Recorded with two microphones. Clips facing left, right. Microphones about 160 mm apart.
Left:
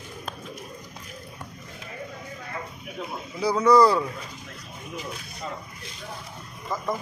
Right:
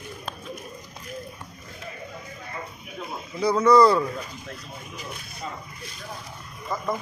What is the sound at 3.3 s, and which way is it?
Speech, 10° left (ahead or behind).